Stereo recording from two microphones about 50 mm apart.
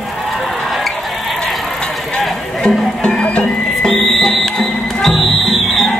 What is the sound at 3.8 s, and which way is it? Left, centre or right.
Music, centre.